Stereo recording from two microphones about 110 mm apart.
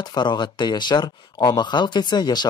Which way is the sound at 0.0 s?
40° left (ahead or behind).